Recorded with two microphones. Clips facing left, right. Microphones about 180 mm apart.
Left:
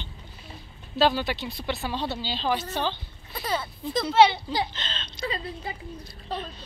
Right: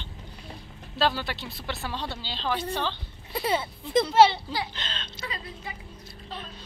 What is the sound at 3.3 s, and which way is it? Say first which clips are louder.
Speech: right 3 dB; 25° right (ahead or behind).